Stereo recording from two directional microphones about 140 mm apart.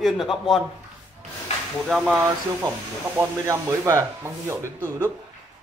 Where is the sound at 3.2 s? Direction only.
20° right (ahead or behind).